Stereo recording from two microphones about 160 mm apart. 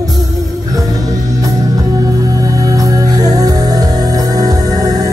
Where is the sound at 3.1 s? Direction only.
25° right (ahead or behind).